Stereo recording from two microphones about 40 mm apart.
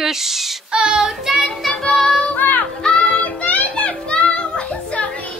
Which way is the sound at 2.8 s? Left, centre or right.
Left.